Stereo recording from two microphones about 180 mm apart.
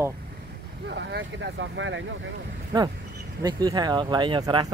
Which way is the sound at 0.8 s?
70° right (ahead or behind).